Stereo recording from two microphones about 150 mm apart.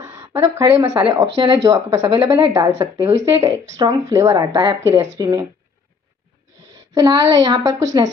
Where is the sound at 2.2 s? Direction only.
40° right (ahead or behind).